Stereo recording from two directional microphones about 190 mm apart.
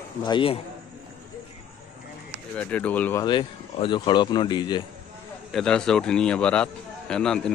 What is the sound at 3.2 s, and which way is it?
Speech, 25° left (ahead or behind).